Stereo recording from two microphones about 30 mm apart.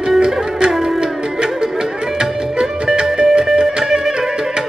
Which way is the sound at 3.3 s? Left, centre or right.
Centre.